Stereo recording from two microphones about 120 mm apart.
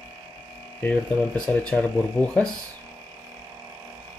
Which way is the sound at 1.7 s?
10° left (ahead or behind).